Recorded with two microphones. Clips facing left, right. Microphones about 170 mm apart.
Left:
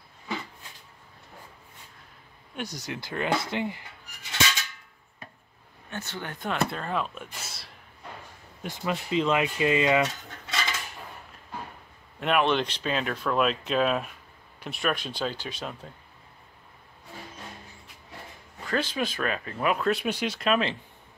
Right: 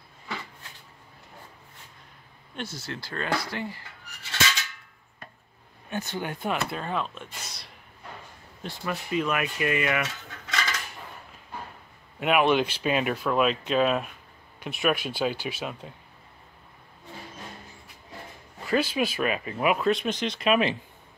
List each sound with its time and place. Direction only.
2.5 s speech: 15° left (ahead or behind)
5.9 s speech: 15° right (ahead or behind); by 7.7 s 5° left (ahead or behind)
8.6 s speech: 20° left (ahead or behind)
10.0 s mechanisms: 35° left (ahead or behind)
12.2 s speech: 5° right (ahead or behind)
18.7 s speech: 10° right (ahead or behind)
19.9 s speech: 5° left (ahead or behind)